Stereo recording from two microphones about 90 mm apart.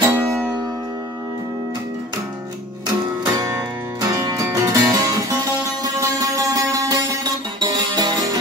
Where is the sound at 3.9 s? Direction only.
45° right (ahead or behind).